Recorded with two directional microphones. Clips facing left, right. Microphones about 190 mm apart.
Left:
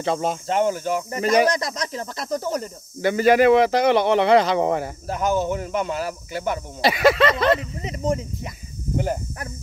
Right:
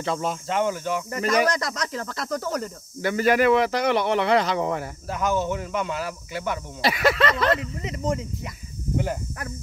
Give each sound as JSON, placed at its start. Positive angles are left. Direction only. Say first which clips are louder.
{"t": 0.0, "sound": "speech", "louder": "left 3 dB", "side_deg": 25}
{"t": 0.5, "sound": "speech", "louder": "left 3 dB", "side_deg": 40}
{"t": 1.1, "sound": "speech", "louder": "left 4 dB", "side_deg": 25}
{"t": 6.9, "sound": "speech", "louder": "left 4 dB", "side_deg": 25}
{"t": 9.0, "sound": "speech", "louder": "left 3 dB", "side_deg": 40}